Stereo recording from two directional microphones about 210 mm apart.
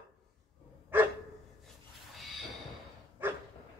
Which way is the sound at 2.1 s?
Centre (ahead or behind).